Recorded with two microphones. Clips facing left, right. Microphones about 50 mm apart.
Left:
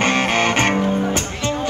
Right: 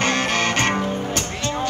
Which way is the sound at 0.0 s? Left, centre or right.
Centre.